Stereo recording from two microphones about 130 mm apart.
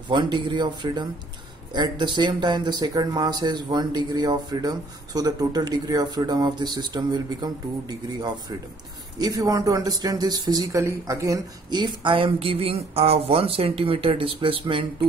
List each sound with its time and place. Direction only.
0.1 s speech: 35° right (ahead or behind)
9.2 s speech: 25° right (ahead or behind)